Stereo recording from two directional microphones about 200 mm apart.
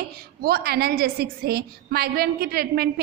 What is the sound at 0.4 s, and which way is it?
A woman's voice, 50° right (ahead or behind).